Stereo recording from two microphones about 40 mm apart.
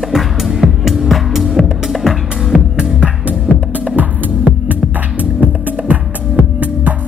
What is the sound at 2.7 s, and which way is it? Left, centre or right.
Music, right.